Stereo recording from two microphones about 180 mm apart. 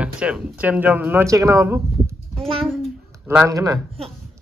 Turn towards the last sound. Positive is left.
turn(degrees=-20)  # may be behind; listen again after turning